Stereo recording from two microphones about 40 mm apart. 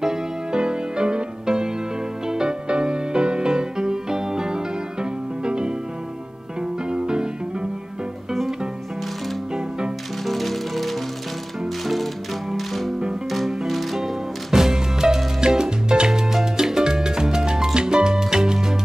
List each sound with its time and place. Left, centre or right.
0.0 s music: centre
6.9 s music: centre
10.2 s music: centre
14.5 s music: centre
15.4 s salsa music: centre
16.5 s music: centre